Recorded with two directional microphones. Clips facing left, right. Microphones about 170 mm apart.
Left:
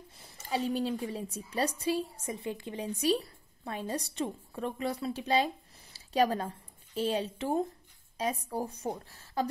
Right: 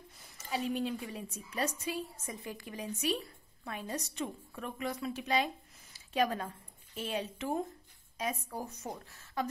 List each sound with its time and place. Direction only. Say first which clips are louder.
0.2 s a woman's voice: left 4 dB; 30° left (ahead or behind)